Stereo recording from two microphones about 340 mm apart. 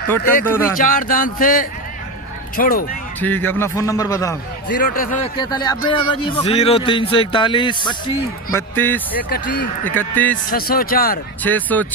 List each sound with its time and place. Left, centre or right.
0.2 s speech: left
3.2 s speech: centre
4.6 s speech: left
5.4 s speech: centre
9.3 s speech: left
9.8 s speech: centre
10.5 s speech: left
11.4 s speech: centre